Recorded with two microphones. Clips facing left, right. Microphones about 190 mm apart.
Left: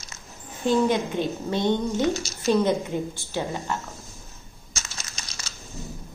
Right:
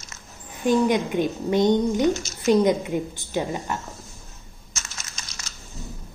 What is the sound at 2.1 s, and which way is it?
Speech, 35° left (ahead or behind).